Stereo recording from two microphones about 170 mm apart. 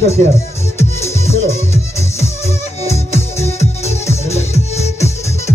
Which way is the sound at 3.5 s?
40° left (ahead or behind).